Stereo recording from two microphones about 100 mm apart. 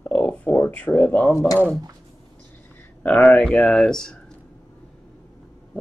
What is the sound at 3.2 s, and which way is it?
Speech, 5° left (ahead or behind).